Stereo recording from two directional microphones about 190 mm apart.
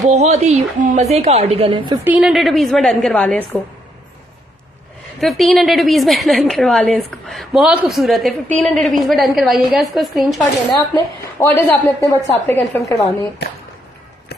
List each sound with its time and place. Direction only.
0.0 s a woman's voice: 35° right (ahead or behind)
2.0 s a woman's voice: 5° right (ahead or behind)
5.2 s a woman's voice: centre (ahead or behind)
11.3 s a woman's voice: 10° left (ahead or behind)